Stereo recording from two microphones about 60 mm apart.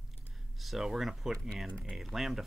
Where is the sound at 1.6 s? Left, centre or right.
Centre.